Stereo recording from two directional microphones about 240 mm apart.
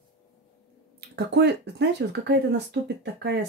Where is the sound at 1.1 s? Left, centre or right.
Right.